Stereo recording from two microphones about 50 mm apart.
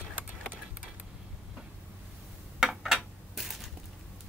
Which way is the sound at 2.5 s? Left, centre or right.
Centre.